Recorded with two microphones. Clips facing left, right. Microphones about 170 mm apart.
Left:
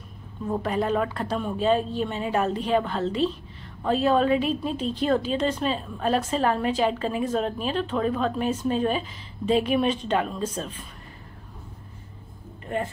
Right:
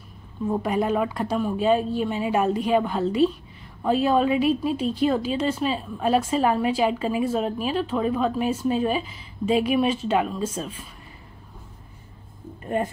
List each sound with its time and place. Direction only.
0.5 s a woman's voice: 10° right (ahead or behind)
12.6 s speech: 20° right (ahead or behind)